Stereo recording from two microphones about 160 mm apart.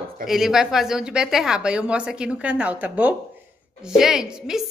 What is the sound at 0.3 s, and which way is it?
A woman's voice, 5° right (ahead or behind).